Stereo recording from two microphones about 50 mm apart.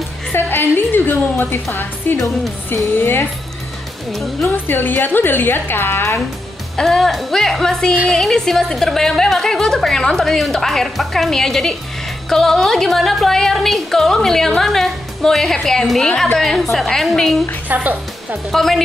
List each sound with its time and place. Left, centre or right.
0.3 s a woman's voice: left
4.5 s a woman's voice: left
6.8 s a woman's voice: centre
18.5 s speech: centre